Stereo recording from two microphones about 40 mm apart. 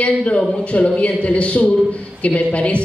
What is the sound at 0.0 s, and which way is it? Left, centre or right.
A woman's voice, left.